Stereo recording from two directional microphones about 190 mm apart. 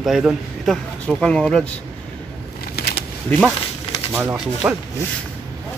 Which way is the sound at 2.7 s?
55° left (ahead or behind).